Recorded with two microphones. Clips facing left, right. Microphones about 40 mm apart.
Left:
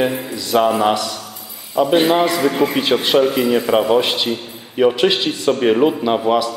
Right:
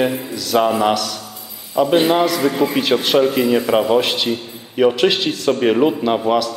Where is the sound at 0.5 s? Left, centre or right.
Centre.